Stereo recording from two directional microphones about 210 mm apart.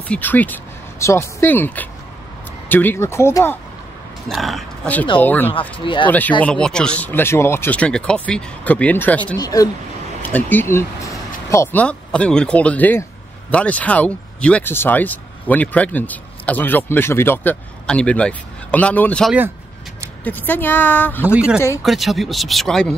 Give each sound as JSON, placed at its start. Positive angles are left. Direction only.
{"t": 0.1, "sound": "speech", "side_deg": 10}
{"t": 4.3, "sound": "speech", "side_deg": 0}
{"t": 5.5, "sound": "speech", "side_deg": 25}
{"t": 6.0, "sound": "speech", "side_deg": 10}
{"t": 21.2, "sound": "speech", "side_deg": -5}
{"t": 21.5, "sound": "speech", "side_deg": 15}
{"t": 21.8, "sound": "speech", "side_deg": 0}